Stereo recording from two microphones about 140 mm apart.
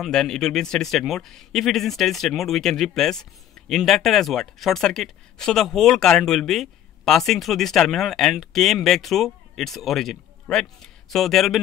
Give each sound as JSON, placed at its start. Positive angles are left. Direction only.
{"t": 0.0, "sound": "a man's voice", "side_deg": 5}